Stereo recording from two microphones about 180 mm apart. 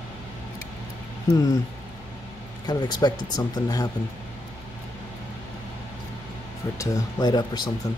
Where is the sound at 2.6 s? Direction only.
25° left (ahead or behind).